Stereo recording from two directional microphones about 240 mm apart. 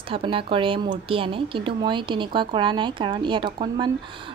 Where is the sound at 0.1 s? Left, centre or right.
Right.